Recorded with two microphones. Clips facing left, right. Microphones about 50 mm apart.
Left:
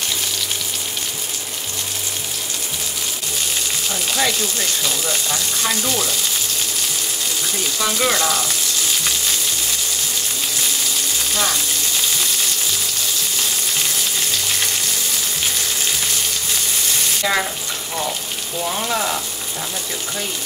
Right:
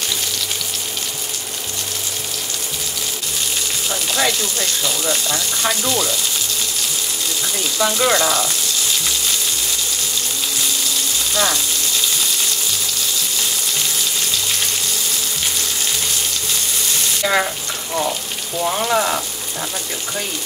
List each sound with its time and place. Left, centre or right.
4.1 s speech: centre
7.8 s speech: centre
17.2 s speech: centre
18.7 s frying: centre